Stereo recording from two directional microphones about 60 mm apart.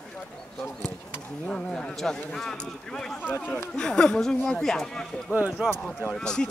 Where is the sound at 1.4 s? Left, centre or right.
Centre.